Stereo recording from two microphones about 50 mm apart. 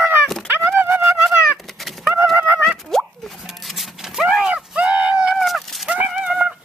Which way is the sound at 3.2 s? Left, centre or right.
Centre.